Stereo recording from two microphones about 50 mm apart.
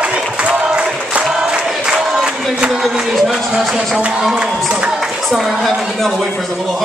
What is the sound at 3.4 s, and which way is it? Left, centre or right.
Speech, centre.